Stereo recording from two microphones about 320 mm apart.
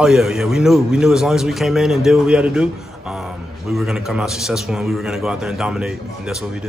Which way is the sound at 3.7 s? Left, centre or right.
Centre.